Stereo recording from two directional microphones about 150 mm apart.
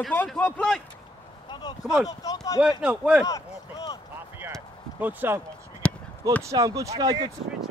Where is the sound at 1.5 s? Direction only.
25° left (ahead or behind).